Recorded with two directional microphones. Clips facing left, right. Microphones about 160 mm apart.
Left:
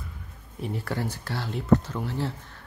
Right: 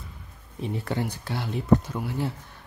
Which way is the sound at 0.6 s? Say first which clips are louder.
Right 2 dB; 20° right (ahead or behind).